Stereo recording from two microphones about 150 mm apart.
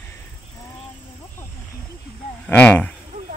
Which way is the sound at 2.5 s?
10° left (ahead or behind).